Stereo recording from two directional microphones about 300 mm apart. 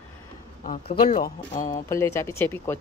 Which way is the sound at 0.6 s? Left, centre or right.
Left.